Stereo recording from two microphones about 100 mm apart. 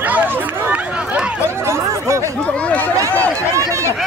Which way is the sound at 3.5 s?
30° right (ahead or behind).